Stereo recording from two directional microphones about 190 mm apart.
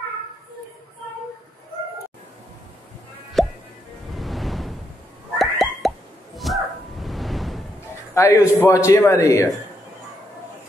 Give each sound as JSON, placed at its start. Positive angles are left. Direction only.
{"t": 3.4, "sound": "music", "side_deg": 0}
{"t": 5.4, "sound": "plop", "side_deg": 0}
{"t": 8.1, "sound": "a man's voice", "side_deg": 15}